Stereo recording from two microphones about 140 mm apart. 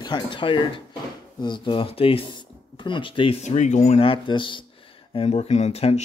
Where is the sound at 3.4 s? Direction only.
60° left (ahead or behind).